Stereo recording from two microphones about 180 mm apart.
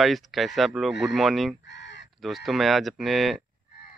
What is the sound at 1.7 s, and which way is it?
Crow, 75° left (ahead or behind).